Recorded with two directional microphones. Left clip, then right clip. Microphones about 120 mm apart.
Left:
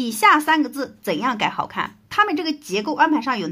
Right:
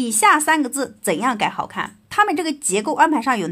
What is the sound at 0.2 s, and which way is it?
Speech, 15° right (ahead or behind).